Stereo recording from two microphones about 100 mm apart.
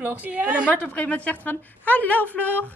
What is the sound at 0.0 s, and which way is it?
Speech, 15° right (ahead or behind).